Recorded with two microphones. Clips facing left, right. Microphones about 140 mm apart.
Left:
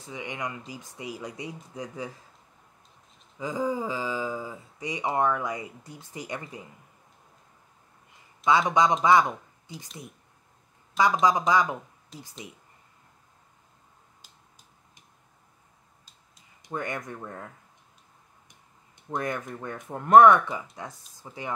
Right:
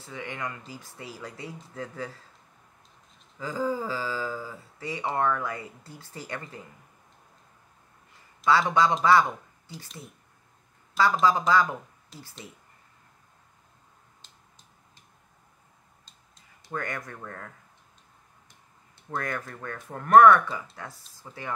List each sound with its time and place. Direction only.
0.0 s speech: 15° left (ahead or behind)
3.3 s speech: 20° left (ahead or behind)
8.5 s speech: 20° left (ahead or behind)
11.0 s speech: 15° left (ahead or behind)
12.1 s speech: centre (ahead or behind)
14.2 s a sound: 5° left (ahead or behind)
16.6 s speech: 20° left (ahead or behind)
18.5 s speech: 20° left (ahead or behind)